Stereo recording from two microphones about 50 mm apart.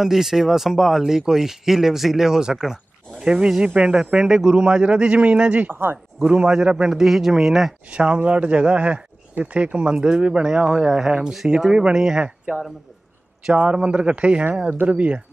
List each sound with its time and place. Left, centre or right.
0.0 s speech: centre; by 5.7 s right
5.7 s speech: right
6.4 s speech: centre
7.9 s speech: right
13.5 s speech: right